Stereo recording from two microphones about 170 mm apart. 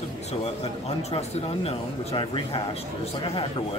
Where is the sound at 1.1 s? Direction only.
35° left (ahead or behind).